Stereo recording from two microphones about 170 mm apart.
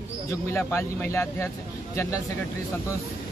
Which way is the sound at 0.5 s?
15° left (ahead or behind).